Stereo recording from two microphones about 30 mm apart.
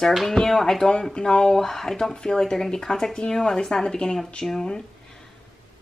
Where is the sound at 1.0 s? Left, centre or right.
Left.